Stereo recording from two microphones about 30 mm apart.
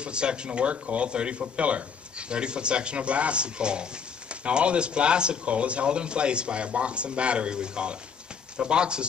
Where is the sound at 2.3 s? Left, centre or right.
Right.